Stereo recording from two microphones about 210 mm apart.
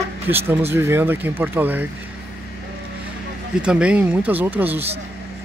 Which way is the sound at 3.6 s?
5° right (ahead or behind).